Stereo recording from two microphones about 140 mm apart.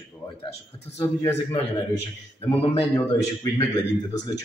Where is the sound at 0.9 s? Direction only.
20° left (ahead or behind).